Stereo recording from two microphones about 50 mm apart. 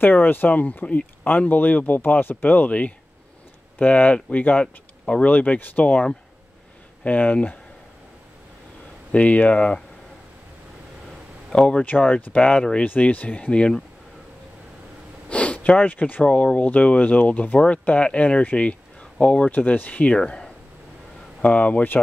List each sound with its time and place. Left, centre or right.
0.0 s speech: left
5.0 s speech: centre
5.3 s speech: left
7.1 s speech: left
9.1 s speech: left
11.5 s speech: left
12.1 s speech: left
13.5 s speech: centre
15.2 s speech: left
16.3 s speech: left
19.5 s speech: left
21.4 s speech: left